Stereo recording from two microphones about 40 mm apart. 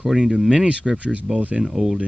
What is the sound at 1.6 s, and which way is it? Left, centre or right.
Speech, centre.